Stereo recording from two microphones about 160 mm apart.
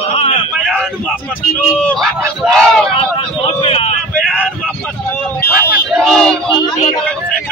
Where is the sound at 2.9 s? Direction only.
40° left (ahead or behind).